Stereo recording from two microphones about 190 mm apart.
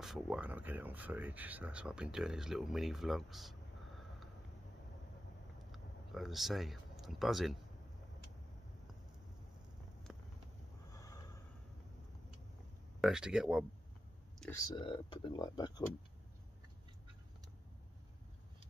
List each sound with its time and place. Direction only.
0.0 s speech: 5° right (ahead or behind)
5.7 s speech: centre (ahead or behind)
10.1 s vehicle: centre (ahead or behind)
10.9 s snort: 15° left (ahead or behind)
13.0 s speech: 5° right (ahead or behind)
14.5 s speech: 20° left (ahead or behind)